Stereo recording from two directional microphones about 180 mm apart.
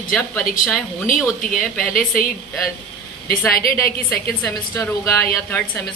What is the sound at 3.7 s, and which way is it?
A woman's voice, 10° left (ahead or behind).